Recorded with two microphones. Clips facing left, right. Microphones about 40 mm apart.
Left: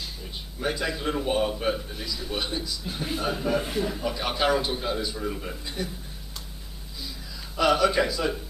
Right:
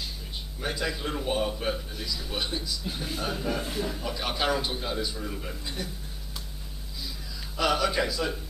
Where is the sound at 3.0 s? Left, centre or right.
Centre.